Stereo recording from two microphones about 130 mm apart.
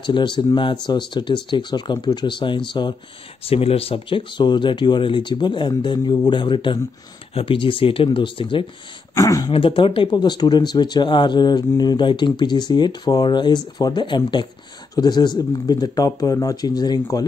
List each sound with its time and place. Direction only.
0.0 s speech: 40° left (ahead or behind)
3.4 s speech: 50° left (ahead or behind)
9.1 s speech: 25° left (ahead or behind)
9.5 s speech: 40° left (ahead or behind)